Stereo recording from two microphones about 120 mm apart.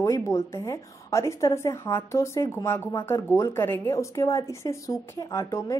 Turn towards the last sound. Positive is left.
turn(degrees=25)  # may be behind; listen again after turning